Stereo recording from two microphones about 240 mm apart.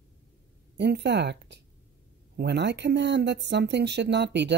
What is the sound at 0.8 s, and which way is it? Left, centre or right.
Speech, right.